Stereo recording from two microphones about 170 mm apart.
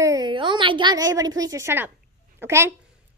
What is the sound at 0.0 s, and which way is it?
A woman's voice, 25° right (ahead or behind).